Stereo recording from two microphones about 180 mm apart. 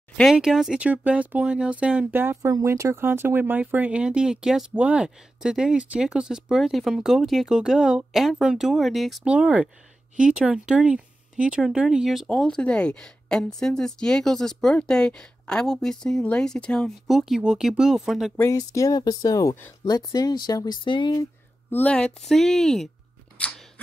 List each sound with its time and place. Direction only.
0.2 s speech: centre (ahead or behind)
18.4 s speech: 20° left (ahead or behind)
21.6 s speech: 10° left (ahead or behind)